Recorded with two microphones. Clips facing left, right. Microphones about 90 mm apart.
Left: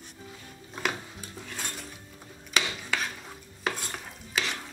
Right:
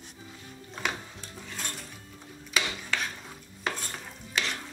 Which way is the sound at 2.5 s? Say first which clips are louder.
Left 1 dB; centre (ahead or behind).